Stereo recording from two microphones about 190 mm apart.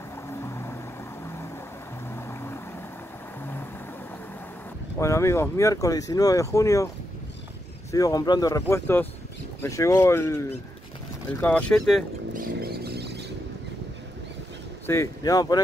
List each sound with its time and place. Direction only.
0.3 s music: 15° left (ahead or behind)
1.2 s vehicle: 15° left (ahead or behind)
2.0 s music: 10° left (ahead or behind)
4.9 s speech: 15° left (ahead or behind)
7.9 s speech: 20° left (ahead or behind)
11.4 s speech: 5° left (ahead or behind)
12.4 s a sound: 55° right (ahead or behind)
14.9 s speech: 15° left (ahead or behind)